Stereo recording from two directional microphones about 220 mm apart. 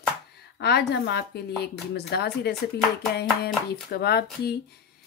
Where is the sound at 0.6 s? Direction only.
50° left (ahead or behind).